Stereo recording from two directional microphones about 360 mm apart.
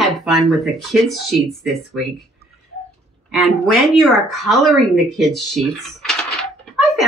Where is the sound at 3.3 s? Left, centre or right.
Centre.